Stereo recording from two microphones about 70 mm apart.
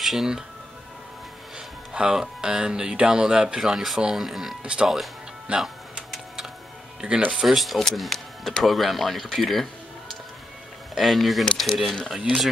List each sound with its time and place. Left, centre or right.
0.0 s speech: centre
2.0 s speech: centre
7.3 s speech: centre
11.0 s speech: centre